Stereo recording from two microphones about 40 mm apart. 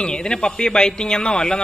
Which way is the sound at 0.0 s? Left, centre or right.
Left.